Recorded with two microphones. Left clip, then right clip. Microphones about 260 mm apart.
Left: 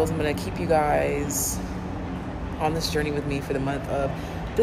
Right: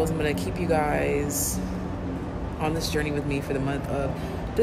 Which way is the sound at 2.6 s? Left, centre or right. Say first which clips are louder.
Left 2 dB; centre.